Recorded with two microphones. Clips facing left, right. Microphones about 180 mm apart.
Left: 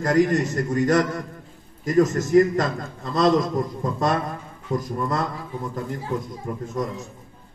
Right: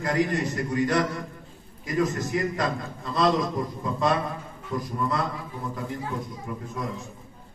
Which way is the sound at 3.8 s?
45° left (ahead or behind).